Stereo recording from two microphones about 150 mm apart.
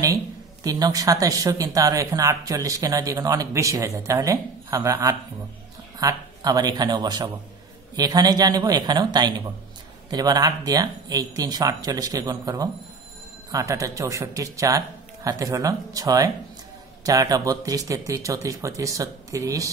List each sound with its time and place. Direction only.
0.7 s speech: 25° right (ahead or behind)